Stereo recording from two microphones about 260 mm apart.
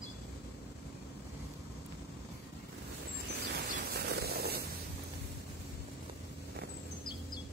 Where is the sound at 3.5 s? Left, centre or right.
Right.